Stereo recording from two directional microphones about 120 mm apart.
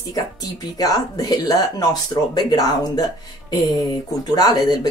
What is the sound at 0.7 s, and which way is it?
Speech, 30° left (ahead or behind).